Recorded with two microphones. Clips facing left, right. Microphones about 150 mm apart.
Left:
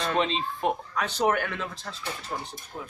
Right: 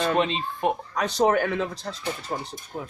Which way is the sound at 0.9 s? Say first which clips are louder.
Right 6 dB; 40° right (ahead or behind).